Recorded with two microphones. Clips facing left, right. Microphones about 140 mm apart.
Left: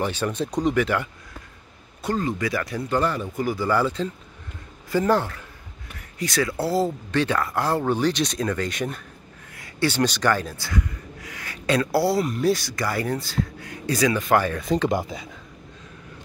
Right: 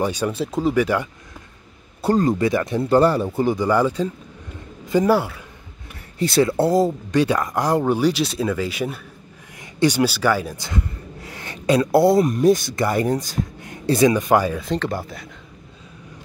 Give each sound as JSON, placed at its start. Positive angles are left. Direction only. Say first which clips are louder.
{"t": 0.0, "sound": "speech", "louder": "right 3 dB", "side_deg": -10}
{"t": 2.0, "sound": "speech", "louder": "right 7 dB", "side_deg": -35}
{"t": 3.5, "sound": "speech", "louder": "right 1 dB", "side_deg": -15}
{"t": 6.1, "sound": "speech", "louder": "right 7 dB", "side_deg": -30}
{"t": 9.6, "sound": "gasp", "louder": "right 4 dB", "side_deg": -15}
{"t": 11.6, "sound": "speech", "louder": "right 6 dB", "side_deg": -15}
{"t": 14.8, "sound": "speech", "louder": "left 3 dB", "side_deg": 15}